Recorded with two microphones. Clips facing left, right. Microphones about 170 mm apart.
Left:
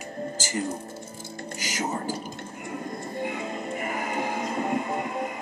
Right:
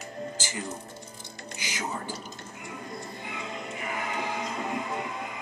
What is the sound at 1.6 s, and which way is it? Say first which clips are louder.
Speech: left 4 dB; 45° left (ahead or behind).